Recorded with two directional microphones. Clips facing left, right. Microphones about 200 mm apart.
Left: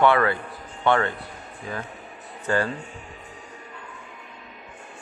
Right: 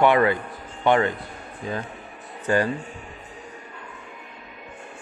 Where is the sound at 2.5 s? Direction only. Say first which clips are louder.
Right 2 dB; 15° right (ahead or behind).